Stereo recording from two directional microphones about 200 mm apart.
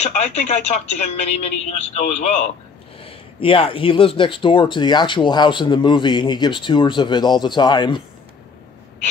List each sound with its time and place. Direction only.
0.0 s a woman's voice: 35° left (ahead or behind)